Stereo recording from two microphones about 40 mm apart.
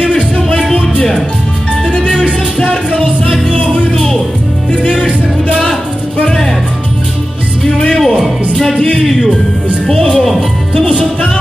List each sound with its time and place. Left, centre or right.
0.1 s music: centre
2.1 s music: left
8.0 s music: centre